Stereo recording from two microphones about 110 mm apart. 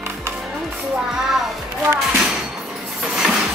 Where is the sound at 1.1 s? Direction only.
Centre (ahead or behind).